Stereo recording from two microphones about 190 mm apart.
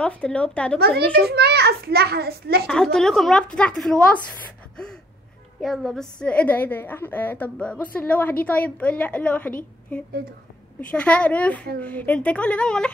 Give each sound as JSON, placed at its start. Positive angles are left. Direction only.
{"t": 0.0, "sound": "a woman's voice", "side_deg": 5}
{"t": 0.7, "sound": "a child's voice", "side_deg": -55}
{"t": 2.6, "sound": "a woman's voice", "side_deg": 5}
{"t": 5.6, "sound": "a woman's voice", "side_deg": 0}
{"t": 10.8, "sound": "a woman's voice", "side_deg": 5}